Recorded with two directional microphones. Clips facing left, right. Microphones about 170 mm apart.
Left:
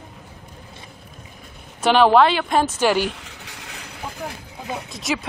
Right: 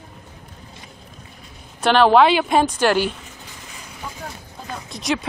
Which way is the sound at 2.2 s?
5° right (ahead or behind).